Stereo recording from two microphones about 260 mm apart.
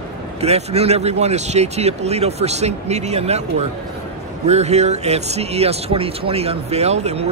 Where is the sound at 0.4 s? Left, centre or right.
Right.